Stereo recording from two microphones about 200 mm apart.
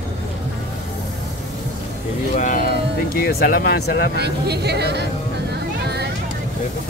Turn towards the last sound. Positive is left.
turn(degrees=-55)  # may be behind; listen again after turning